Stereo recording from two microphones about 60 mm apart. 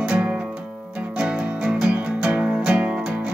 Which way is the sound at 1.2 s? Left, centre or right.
Centre.